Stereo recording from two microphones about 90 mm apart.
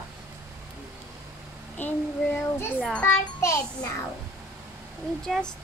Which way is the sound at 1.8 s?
20° left (ahead or behind).